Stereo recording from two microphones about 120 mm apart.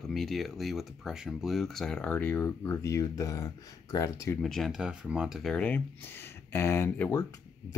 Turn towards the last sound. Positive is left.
turn(degrees=20)  # may be behind; listen again after turning